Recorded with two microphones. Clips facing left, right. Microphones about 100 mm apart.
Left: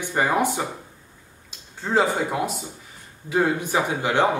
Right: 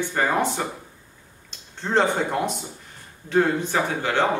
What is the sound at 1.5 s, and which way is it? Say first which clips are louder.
Speech: even; 5° left (ahead or behind).